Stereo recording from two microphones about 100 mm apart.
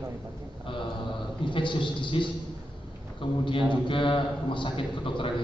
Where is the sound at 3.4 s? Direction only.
55° left (ahead or behind).